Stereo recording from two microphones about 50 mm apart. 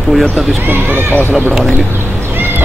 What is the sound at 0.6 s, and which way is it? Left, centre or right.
Speech, right.